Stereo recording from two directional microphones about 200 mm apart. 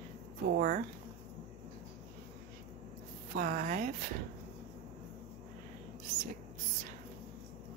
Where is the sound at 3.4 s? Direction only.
40° right (ahead or behind).